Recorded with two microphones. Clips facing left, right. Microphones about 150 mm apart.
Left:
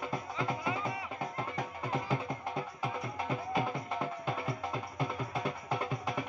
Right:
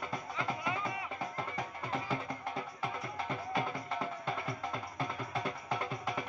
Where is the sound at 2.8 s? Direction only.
5° left (ahead or behind).